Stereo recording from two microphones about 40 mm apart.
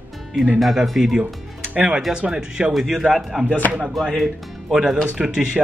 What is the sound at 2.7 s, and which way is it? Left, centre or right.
A man's voice, centre.